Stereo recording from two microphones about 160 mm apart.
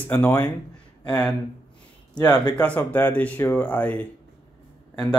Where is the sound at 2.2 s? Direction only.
25° left (ahead or behind).